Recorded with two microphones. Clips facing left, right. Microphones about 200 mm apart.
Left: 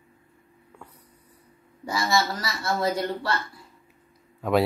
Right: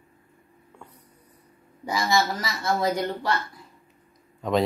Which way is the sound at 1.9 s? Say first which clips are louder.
Right 1 dB; 20° right (ahead or behind).